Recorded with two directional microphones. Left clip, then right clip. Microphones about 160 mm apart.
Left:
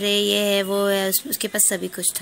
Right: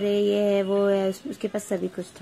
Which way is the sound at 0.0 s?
15° left (ahead or behind).